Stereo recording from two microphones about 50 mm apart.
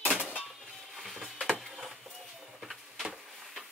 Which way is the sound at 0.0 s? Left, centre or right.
Right.